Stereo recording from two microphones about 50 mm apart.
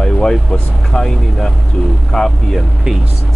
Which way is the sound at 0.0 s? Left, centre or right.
Centre.